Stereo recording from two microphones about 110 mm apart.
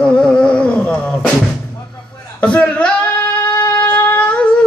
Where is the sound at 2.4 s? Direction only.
15° left (ahead or behind).